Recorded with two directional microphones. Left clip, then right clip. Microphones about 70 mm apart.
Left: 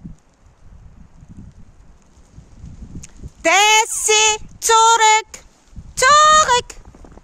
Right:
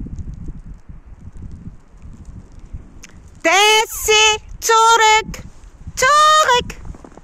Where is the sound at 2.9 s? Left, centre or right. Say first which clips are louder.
Left 1 dB; left.